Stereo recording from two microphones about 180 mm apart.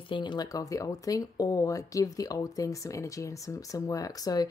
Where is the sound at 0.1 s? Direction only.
25° left (ahead or behind).